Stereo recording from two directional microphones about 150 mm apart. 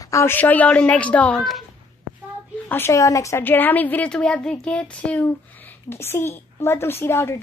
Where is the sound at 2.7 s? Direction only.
15° left (ahead or behind).